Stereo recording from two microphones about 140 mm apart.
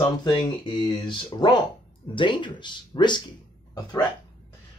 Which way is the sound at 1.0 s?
30° left (ahead or behind).